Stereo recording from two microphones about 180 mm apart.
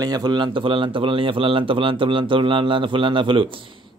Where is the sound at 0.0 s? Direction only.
20° right (ahead or behind).